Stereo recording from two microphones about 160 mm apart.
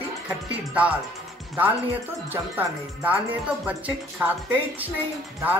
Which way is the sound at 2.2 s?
10° right (ahead or behind).